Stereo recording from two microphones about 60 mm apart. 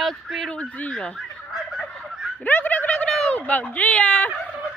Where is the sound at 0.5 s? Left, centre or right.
Left.